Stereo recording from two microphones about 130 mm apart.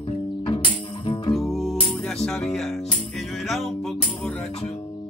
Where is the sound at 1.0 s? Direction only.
40° left (ahead or behind).